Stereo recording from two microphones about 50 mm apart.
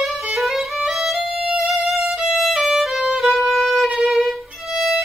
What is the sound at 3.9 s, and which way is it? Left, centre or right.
Violin, right.